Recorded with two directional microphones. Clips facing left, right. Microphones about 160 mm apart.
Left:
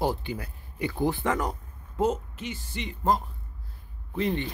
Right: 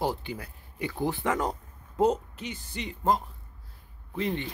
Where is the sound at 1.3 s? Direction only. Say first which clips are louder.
Right 1 dB; 25° right (ahead or behind).